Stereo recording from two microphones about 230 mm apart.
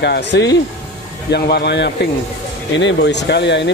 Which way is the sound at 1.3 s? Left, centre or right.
Left.